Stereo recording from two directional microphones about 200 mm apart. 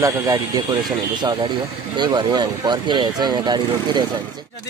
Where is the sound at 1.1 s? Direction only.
20° right (ahead or behind).